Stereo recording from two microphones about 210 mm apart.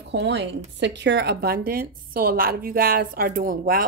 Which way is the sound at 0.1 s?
55° right (ahead or behind).